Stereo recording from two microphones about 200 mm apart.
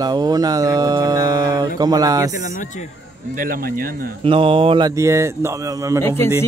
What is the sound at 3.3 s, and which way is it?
Speech, 45° right (ahead or behind).